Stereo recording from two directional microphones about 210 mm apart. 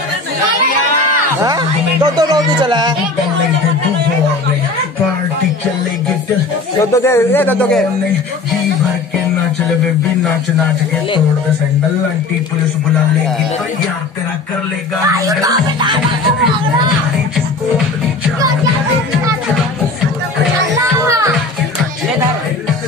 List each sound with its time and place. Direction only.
1.4 s speech: 20° right (ahead or behind)
6.8 s a man's voice: 15° left (ahead or behind)
15.1 s music: 15° right (ahead or behind)